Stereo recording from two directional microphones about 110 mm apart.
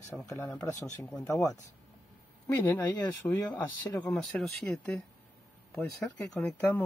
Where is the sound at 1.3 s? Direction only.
30° left (ahead or behind).